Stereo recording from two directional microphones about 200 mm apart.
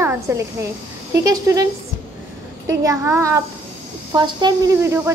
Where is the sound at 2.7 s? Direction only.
15° right (ahead or behind).